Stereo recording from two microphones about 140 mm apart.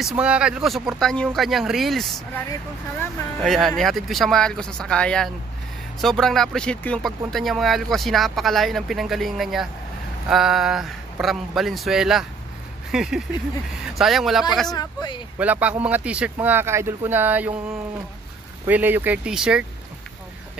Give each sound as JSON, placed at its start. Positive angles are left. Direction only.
{"t": 0.0, "sound": "speech", "side_deg": -10}
{"t": 3.4, "sound": "speech", "side_deg": 0}
{"t": 14.7, "sound": "speech", "side_deg": 30}
{"t": 15.3, "sound": "speech", "side_deg": -10}
{"t": 18.7, "sound": "speech", "side_deg": -15}